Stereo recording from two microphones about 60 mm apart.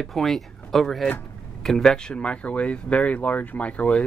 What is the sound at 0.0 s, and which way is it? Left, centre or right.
Speech, centre.